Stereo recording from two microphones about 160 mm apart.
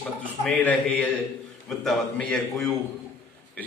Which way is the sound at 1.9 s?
5° left (ahead or behind).